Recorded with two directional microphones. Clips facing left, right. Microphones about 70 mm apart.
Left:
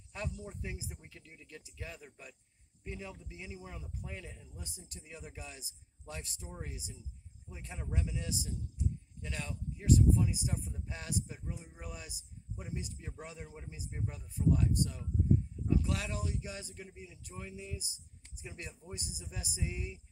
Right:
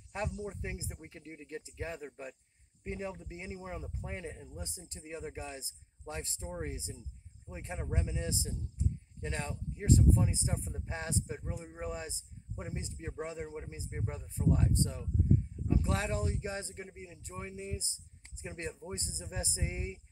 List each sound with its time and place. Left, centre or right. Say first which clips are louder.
0.1 s speech: right 5 dB; right